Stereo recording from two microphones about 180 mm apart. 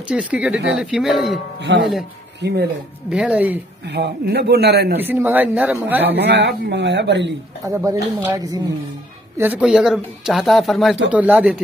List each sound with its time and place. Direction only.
0.1 s speech: 5° right (ahead or behind)
1.6 s speech: 80° right
3.1 s speech: 5° right (ahead or behind)
3.9 s a man's voice: 65° right (ahead or behind)
4.9 s speech: 10° right (ahead or behind)
6.1 s speech: 70° right (ahead or behind)
7.6 s speech: 20° right (ahead or behind)
9.4 s speech: 10° right (ahead or behind)